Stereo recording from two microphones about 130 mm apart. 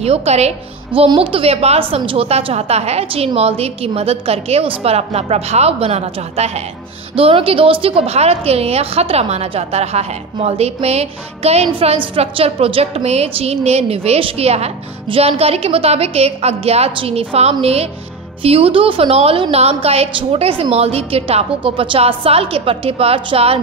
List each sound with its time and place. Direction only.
0.0 s a woman's voice: 50° right (ahead or behind)
1.0 s a woman's voice: 40° right (ahead or behind)
7.2 s a woman's voice: 45° right (ahead or behind)